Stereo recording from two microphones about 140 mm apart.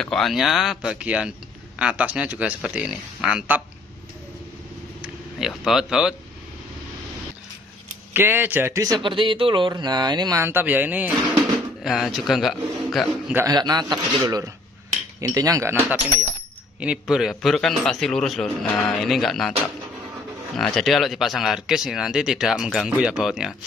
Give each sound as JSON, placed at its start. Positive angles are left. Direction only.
{"t": 0.0, "sound": "speech", "side_deg": 5}
{"t": 5.0, "sound": "speech", "side_deg": 0}
{"t": 8.1, "sound": "speech", "side_deg": -15}
{"t": 8.8, "sound": "speech", "side_deg": -35}
{"t": 10.4, "sound": "speech", "side_deg": -15}
{"t": 11.3, "sound": "speech", "side_deg": 0}
{"t": 13.5, "sound": "a man's voice", "side_deg": -30}
{"t": 16.8, "sound": "speech", "side_deg": -5}
{"t": 20.5, "sound": "speech", "side_deg": 5}